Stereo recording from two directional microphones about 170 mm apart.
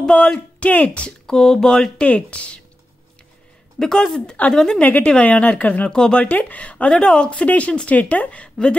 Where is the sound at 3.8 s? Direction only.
Centre (ahead or behind).